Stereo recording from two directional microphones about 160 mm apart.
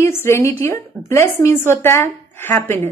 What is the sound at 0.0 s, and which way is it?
A woman's voice, 15° left (ahead or behind).